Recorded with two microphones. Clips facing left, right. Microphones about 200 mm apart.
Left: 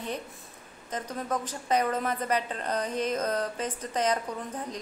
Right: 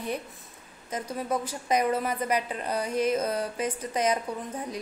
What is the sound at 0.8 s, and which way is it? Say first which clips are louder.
A woman's voice: right 2 dB; 10° right (ahead or behind).